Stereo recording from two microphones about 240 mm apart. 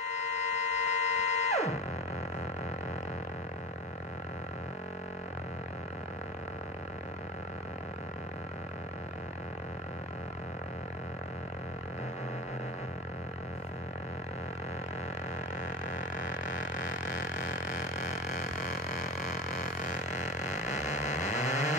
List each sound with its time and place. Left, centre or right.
0.0 s music: left
15.6 s vehicle: left
18.9 s vehicle: left